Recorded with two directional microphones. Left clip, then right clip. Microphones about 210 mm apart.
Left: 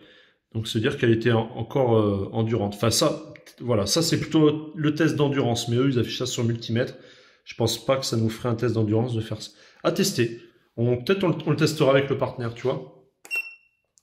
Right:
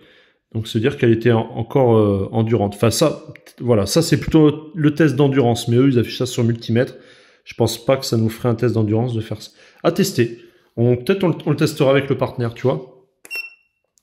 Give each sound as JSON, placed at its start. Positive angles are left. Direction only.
{"t": 0.5, "sound": "speech", "side_deg": -25}